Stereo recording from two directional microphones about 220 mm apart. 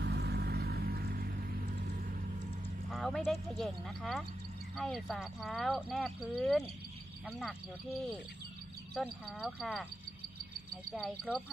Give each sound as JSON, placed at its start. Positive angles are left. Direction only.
{"t": 0.0, "sound": "vehicle", "side_deg": -50}
{"t": 2.9, "sound": "speech", "side_deg": 0}
{"t": 8.9, "sound": "speech", "side_deg": 0}
{"t": 10.9, "sound": "speech", "side_deg": 0}